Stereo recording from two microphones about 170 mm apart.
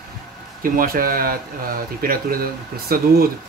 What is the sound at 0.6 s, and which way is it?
A man's voice, 55° right (ahead or behind).